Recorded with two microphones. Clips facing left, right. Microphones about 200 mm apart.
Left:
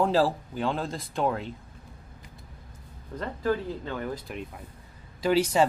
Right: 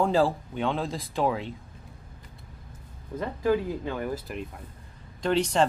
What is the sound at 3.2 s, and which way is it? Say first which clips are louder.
Speech: right 3 dB; 10° right (ahead or behind).